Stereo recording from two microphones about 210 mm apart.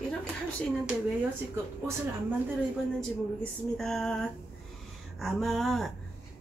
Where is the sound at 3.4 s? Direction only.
Centre (ahead or behind).